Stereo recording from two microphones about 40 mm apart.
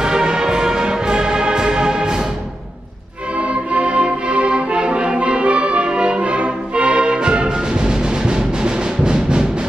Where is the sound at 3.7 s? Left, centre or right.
Right.